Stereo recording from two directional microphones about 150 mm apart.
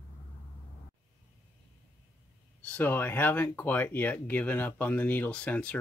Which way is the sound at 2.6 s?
10° left (ahead or behind).